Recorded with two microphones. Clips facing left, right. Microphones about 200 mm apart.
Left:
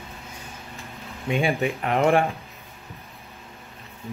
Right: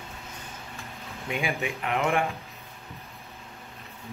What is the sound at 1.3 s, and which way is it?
Speech, 30° left (ahead or behind).